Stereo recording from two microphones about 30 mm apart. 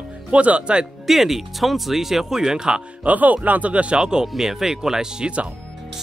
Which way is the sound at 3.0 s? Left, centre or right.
Right.